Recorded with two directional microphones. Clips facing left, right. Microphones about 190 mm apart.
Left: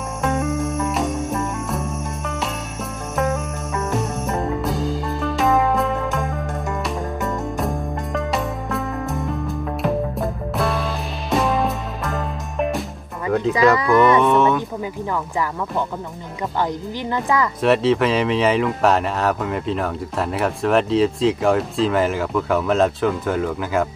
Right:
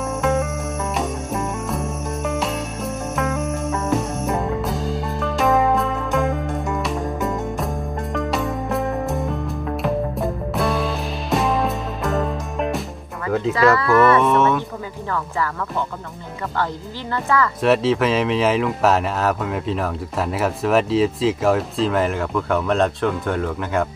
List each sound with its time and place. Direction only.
0.9 s music: centre (ahead or behind)
3.9 s music: centre (ahead or behind)
9.8 s music: centre (ahead or behind)
13.3 s music: centre (ahead or behind)
13.7 s speech: 15° left (ahead or behind)
14.2 s speech: centre (ahead or behind)
17.1 s speech: 15° left (ahead or behind)
17.6 s speech: centre (ahead or behind)